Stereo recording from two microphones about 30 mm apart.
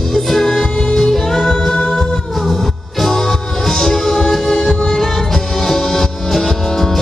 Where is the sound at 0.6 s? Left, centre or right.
Centre.